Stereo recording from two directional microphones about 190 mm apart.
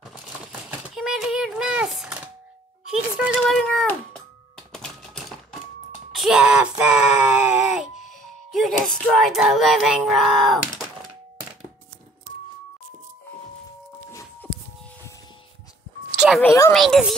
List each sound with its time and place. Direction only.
0.0 s typewriter: centre (ahead or behind)
2.9 s a child's voice: centre (ahead or behind)
4.6 s typewriter: centre (ahead or behind)
6.1 s speech: centre (ahead or behind)
6.8 s a sound: 5° right (ahead or behind)
8.0 s music: centre (ahead or behind)
16.2 s a child's voice: centre (ahead or behind)